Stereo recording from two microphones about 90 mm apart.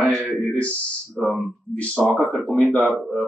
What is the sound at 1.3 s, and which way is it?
Speech, 15° left (ahead or behind).